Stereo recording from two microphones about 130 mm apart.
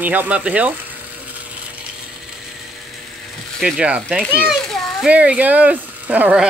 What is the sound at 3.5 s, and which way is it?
A child's voice, 5° right (ahead or behind).